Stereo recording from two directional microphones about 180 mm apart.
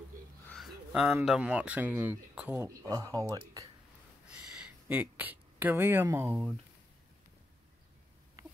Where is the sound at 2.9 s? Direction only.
20° right (ahead or behind).